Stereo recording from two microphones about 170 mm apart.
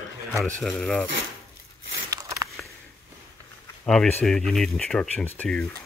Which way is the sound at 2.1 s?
20° right (ahead or behind).